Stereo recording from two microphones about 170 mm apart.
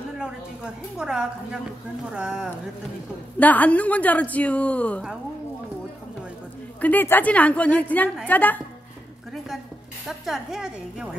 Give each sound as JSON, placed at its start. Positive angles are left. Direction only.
{"t": 0.9, "sound": "a woman's voice", "side_deg": -5}
{"t": 3.3, "sound": "a woman's voice", "side_deg": 10}
{"t": 6.8, "sound": "a woman's voice", "side_deg": 10}
{"t": 10.0, "sound": "a woman's voice", "side_deg": 0}